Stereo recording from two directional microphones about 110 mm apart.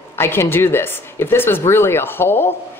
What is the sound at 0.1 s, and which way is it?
A man's voice, 25° left (ahead or behind).